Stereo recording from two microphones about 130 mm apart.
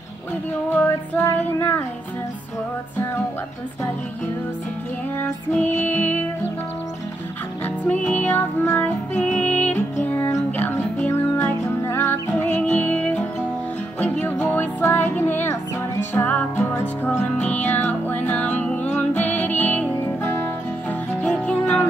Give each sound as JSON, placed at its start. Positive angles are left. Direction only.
{"t": 0.7, "sound": "music", "side_deg": 15}
{"t": 5.2, "sound": "music", "side_deg": 15}
{"t": 7.6, "sound": "music", "side_deg": 10}